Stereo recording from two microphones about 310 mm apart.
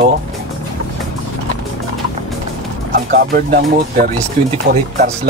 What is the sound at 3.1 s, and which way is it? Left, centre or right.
Speech, right.